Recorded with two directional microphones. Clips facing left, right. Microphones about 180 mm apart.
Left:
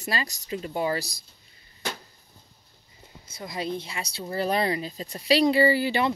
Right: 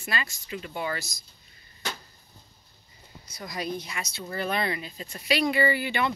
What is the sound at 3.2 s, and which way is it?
A woman's voice, 25° left (ahead or behind).